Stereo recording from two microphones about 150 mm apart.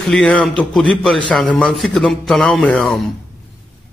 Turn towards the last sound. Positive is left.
turn(degrees=5)  # may be behind; listen again after turning